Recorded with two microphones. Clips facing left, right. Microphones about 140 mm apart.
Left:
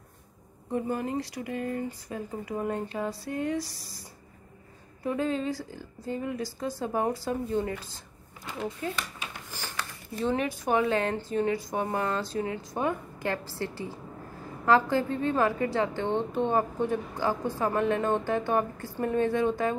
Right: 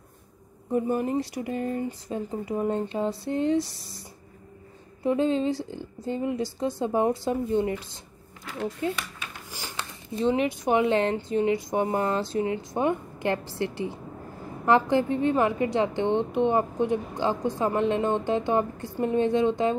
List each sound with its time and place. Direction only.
0.7 s a woman's voice: 25° right (ahead or behind)
5.0 s a woman's voice: 25° right (ahead or behind)
9.5 s a sound: 20° right (ahead or behind)
10.6 s a woman's voice: 20° right (ahead or behind)